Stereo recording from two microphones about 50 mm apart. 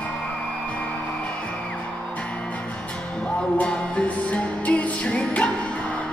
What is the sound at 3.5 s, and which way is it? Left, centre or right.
Music, left.